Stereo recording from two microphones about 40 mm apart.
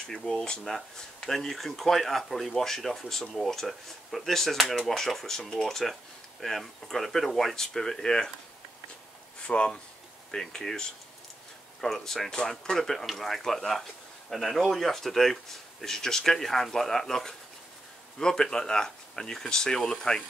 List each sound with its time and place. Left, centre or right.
0.0 s speech: centre
9.5 s speech: left
10.3 s speech: centre